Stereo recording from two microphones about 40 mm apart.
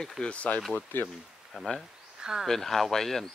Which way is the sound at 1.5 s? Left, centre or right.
Centre.